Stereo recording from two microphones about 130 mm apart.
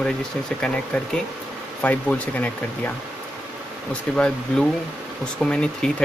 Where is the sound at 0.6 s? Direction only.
5° left (ahead or behind).